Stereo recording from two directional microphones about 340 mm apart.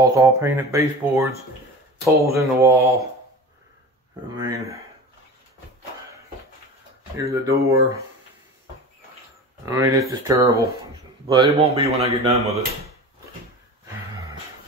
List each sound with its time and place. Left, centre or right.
0.0 s speech: centre
4.4 s speech: centre
7.2 s speech: centre
9.7 s speech: centre